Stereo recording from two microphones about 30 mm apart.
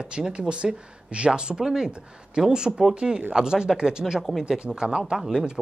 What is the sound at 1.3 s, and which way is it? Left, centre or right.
Speech, right.